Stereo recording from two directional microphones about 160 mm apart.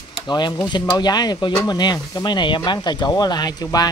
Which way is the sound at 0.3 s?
25° left (ahead or behind).